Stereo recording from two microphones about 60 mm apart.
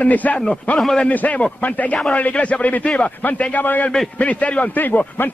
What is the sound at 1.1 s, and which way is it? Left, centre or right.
A man's voice, left.